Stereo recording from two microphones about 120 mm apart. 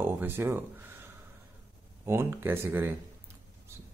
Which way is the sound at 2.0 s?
20° right (ahead or behind).